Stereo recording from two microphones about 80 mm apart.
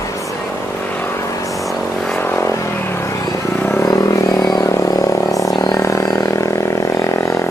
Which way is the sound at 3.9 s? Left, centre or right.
Left.